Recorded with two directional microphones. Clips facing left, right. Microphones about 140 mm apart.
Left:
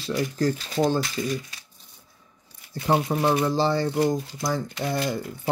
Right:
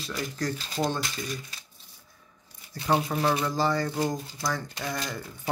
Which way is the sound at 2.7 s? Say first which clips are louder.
Left 3 dB; 25° left (ahead or behind).